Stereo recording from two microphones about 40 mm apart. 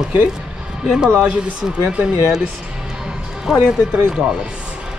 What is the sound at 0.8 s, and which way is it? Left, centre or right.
Speech, centre.